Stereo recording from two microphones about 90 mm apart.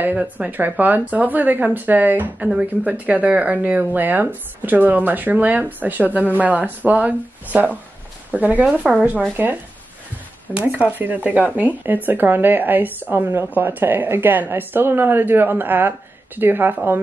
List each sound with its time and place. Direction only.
0.0 s speech: 15° right (ahead or behind)
8.8 s speech: 5° right (ahead or behind)
9.4 s speech: 20° right (ahead or behind)